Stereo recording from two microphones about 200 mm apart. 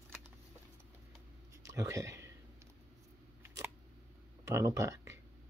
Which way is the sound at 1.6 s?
15° right (ahead or behind).